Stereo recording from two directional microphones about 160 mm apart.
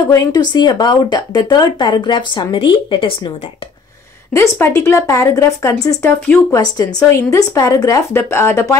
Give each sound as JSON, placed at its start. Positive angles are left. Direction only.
{"t": 0.1, "sound": "speech", "side_deg": 25}
{"t": 4.3, "sound": "speech", "side_deg": 15}